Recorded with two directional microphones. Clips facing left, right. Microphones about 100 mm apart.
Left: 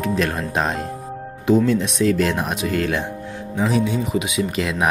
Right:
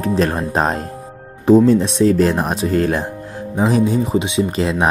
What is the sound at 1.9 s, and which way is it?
Speech, 35° right (ahead or behind).